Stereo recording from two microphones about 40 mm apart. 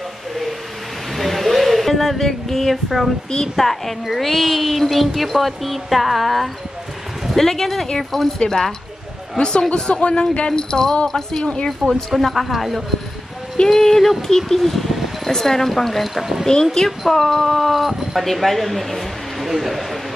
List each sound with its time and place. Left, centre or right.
1.1 s a sound: centre
3.5 s speech: centre
11.4 s speech: left
12.2 s speech: centre
13.7 s speech: centre